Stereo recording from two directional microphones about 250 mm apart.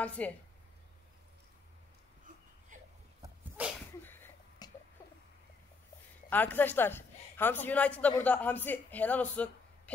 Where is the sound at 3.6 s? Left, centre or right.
Centre.